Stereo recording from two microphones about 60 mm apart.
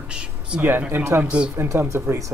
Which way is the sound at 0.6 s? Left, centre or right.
Right.